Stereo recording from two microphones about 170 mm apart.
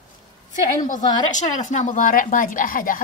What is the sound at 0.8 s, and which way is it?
A woman's voice, 45° left (ahead or behind).